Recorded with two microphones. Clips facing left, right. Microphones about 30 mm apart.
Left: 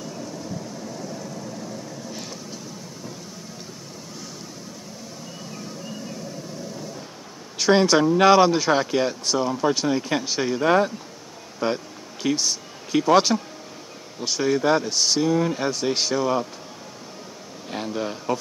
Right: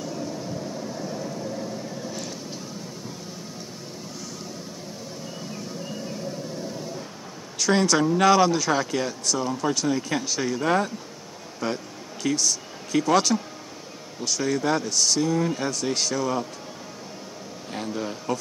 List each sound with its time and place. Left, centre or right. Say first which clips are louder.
0.8 s vehicle: right 2 dB; centre
7.5 s speech: left 4 dB; left
11.6 s a sound: left 4 dB; left
13.0 s speech: left 4 dB; left
17.6 s speech: left 3 dB; centre